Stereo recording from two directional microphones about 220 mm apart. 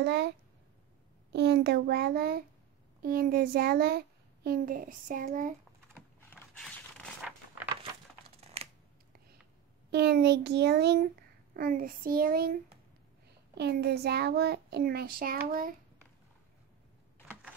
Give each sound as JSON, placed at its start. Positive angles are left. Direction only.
{"t": 0.0, "sound": "a child's voice", "side_deg": -50}
{"t": 1.3, "sound": "a child's voice", "side_deg": -50}
{"t": 5.9, "sound": "a sound", "side_deg": 5}
{"t": 8.4, "sound": "typing", "side_deg": -30}
{"t": 9.8, "sound": "a child's voice", "side_deg": -45}